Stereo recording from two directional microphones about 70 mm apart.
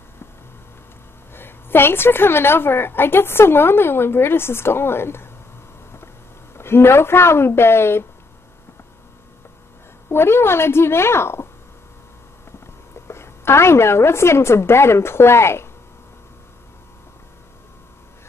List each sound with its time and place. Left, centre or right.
1.3 s a woman's voice: left
6.5 s a woman's voice: left
10.0 s a woman's voice: left
13.1 s a woman's voice: left